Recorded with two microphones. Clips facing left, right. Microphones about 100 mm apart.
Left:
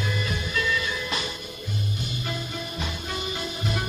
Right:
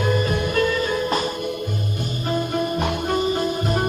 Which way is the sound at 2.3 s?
50° right (ahead or behind).